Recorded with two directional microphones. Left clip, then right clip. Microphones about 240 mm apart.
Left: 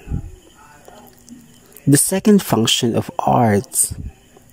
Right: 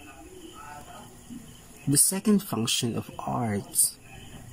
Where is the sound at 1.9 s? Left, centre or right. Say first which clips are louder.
Left 11 dB; left.